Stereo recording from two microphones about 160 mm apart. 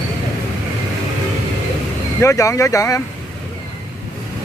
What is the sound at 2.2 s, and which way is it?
Speech, 15° left (ahead or behind).